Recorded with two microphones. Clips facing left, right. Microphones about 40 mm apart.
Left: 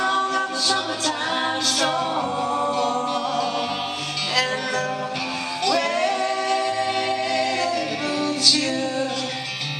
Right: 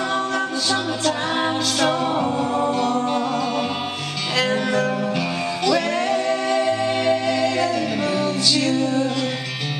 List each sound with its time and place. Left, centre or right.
0.0 s a capella: centre
2.7 s music: centre
8.7 s music: right